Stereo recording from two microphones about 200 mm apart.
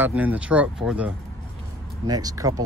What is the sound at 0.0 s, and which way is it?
Speech, 10° right (ahead or behind).